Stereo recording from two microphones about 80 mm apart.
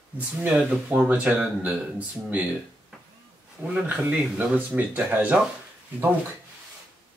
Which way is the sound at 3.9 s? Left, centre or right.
Centre.